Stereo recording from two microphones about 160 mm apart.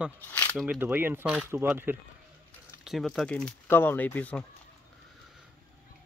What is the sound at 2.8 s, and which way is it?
Speech, centre (ahead or behind).